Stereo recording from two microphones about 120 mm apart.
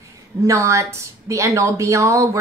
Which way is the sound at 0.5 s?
25° right (ahead or behind).